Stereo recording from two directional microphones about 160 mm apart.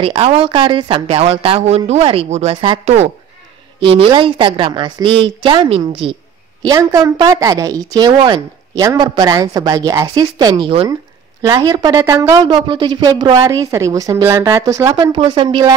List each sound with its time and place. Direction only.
0.0 s speech: 35° right (ahead or behind)
6.6 s a woman's voice: 20° right (ahead or behind)
10.7 s speech: 35° right (ahead or behind)
11.4 s a woman's voice: 25° right (ahead or behind)